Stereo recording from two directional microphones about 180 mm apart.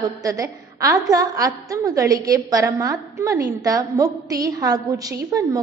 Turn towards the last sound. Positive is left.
turn(degrees=-20)  # may be behind; listen again after turning